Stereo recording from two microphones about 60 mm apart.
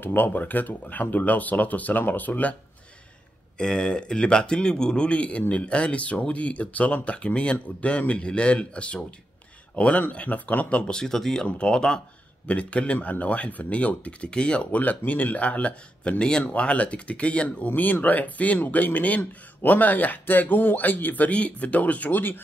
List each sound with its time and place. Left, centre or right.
0.0 s speech: left
3.5 s speech: centre
10.9 s speech: centre
11.4 s speech: centre